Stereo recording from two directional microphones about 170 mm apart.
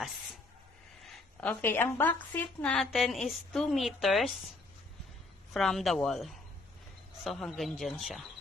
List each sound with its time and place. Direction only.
1.4 s a woman's voice: 10° left (ahead or behind)
5.5 s a woman's voice: centre (ahead or behind)